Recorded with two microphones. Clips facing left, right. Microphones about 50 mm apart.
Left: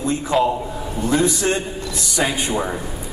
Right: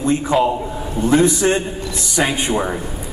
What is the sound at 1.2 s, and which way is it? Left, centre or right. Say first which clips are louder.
Speech: right 4 dB; centre.